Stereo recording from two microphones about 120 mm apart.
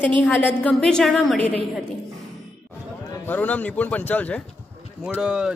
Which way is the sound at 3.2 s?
15° left (ahead or behind).